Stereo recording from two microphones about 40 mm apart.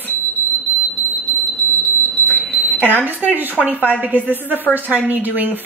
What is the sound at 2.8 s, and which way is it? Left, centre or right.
Speech, left.